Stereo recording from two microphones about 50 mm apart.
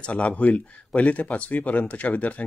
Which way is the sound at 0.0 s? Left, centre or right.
Left.